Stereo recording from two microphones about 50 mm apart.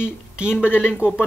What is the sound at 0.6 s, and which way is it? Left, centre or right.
Speech, left.